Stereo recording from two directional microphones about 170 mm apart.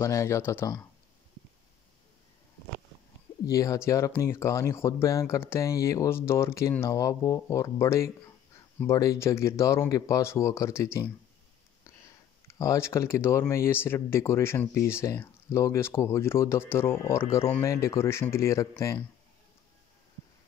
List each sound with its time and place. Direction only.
0.0 s speech: 15° left (ahead or behind)
3.4 s speech: 20° left (ahead or behind)
12.4 s speech: 20° left (ahead or behind)